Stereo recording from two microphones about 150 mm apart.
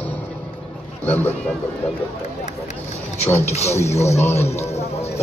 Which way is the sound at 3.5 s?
45° left (ahead or behind).